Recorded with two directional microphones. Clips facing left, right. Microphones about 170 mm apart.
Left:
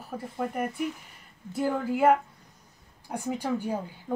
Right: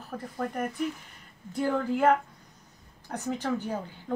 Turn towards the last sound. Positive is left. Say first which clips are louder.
# left 2 dB
turn(degrees=10)  # may be behind; listen again after turning